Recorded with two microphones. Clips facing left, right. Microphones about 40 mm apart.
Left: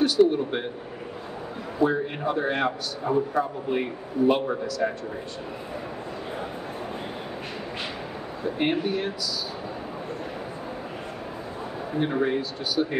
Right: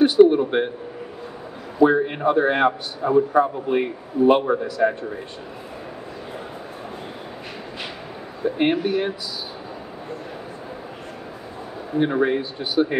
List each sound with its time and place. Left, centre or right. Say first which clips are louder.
0.0 s a sound: right 6 dB; right
1.8 s a man's voice: right 7 dB; right
8.5 s a man's voice: right 5 dB; right
12.0 s a man's voice: right 5 dB; centre